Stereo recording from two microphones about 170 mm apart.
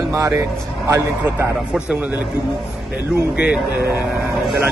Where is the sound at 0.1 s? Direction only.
15° right (ahead or behind).